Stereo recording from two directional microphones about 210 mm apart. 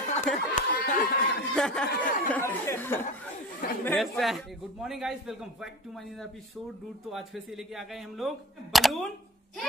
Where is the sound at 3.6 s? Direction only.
45° left (ahead or behind).